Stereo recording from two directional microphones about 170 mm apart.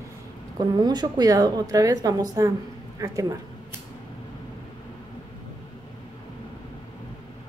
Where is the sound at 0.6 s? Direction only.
25° right (ahead or behind).